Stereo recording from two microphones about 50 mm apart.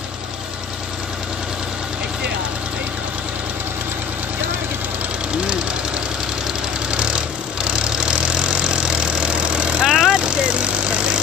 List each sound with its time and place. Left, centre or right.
7.6 s engine: centre